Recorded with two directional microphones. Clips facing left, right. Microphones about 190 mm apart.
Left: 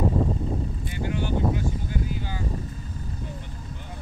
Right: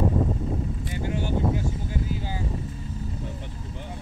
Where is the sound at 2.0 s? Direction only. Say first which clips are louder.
Even; 25° right (ahead or behind).